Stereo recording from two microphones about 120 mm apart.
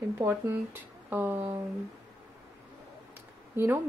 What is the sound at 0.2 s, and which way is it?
Speech, 20° right (ahead or behind).